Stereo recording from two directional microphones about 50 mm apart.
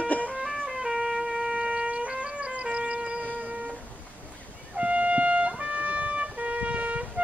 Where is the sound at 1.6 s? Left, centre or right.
Right.